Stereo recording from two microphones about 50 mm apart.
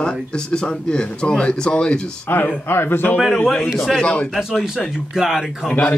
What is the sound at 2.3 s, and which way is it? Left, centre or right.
Speech, left.